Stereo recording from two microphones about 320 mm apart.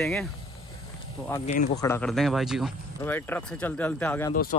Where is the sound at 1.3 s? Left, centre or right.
Centre.